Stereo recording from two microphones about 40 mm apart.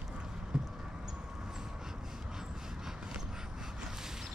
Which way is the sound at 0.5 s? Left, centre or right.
Centre.